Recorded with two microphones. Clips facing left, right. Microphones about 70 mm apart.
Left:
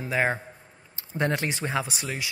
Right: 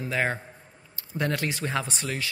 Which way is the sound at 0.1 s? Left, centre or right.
Centre.